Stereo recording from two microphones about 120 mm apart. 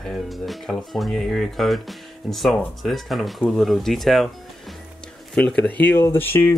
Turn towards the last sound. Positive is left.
turn(degrees=15)  # may be behind; listen again after turning